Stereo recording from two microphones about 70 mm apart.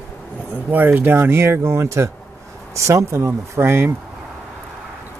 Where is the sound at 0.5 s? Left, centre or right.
Right.